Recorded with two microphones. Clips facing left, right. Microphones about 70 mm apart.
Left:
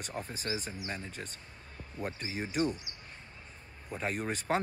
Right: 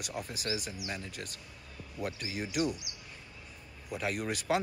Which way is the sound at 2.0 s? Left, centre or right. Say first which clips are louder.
Right 1 dB; left.